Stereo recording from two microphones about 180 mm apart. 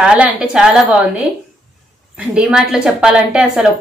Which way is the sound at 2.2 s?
5° right (ahead or behind).